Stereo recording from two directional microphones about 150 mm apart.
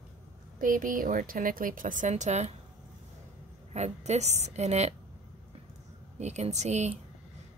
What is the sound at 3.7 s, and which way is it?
Speech, 50° right (ahead or behind).